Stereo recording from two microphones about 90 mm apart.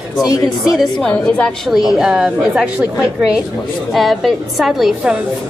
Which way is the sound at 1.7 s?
5° right (ahead or behind).